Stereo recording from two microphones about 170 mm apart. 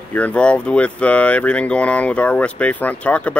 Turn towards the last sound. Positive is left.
turn(degrees=10)  # may be behind; listen again after turning